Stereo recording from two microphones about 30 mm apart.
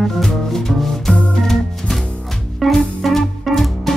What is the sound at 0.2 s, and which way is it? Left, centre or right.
Music, centre.